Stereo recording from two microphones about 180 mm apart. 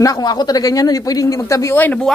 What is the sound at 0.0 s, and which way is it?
Speech, 20° left (ahead or behind).